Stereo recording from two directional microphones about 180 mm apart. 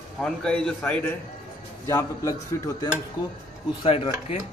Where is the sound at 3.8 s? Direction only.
35° left (ahead or behind).